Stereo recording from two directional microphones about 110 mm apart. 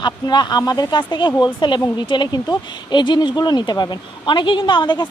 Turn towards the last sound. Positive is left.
turn(degrees=45)  # may be behind; listen again after turning